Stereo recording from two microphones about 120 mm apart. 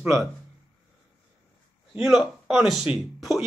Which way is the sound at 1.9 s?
5° right (ahead or behind).